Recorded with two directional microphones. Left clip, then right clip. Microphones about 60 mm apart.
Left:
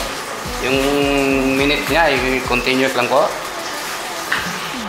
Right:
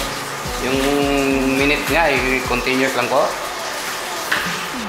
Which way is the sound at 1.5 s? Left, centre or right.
Left.